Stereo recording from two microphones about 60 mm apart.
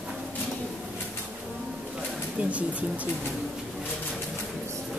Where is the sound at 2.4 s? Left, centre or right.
Right.